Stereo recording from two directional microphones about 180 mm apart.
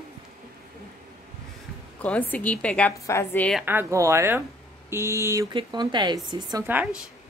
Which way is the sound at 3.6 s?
10° right (ahead or behind).